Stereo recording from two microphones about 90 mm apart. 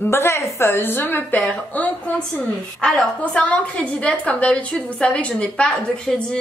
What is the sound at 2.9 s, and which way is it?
A woman's voice, 15° left (ahead or behind).